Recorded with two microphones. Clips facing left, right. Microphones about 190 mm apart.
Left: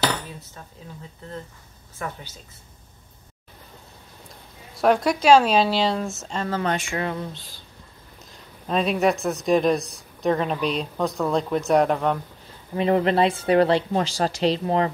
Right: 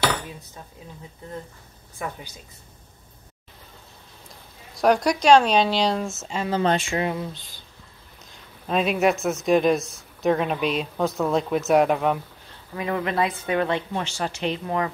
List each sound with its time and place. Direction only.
2.0 s a woman's voice: 15° right (ahead or behind)
4.7 s speech: centre (ahead or behind)
6.6 s speech: 25° right (ahead or behind)
7.2 s speech: centre (ahead or behind)
12.7 s speech: 30° left (ahead or behind)